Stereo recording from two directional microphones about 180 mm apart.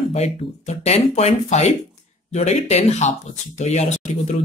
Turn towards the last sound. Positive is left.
turn(degrees=40)  # may be behind; listen again after turning